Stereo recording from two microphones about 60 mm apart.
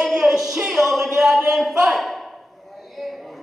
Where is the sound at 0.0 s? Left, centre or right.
Centre.